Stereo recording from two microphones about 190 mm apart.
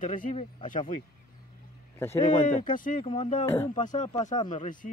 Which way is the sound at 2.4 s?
45° left (ahead or behind).